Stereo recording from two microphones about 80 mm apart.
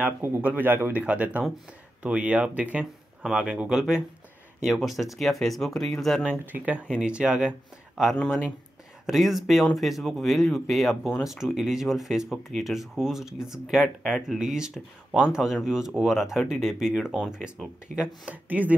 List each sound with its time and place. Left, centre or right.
0.4 s speech: right
1.0 s speech: centre
6.4 s speech: right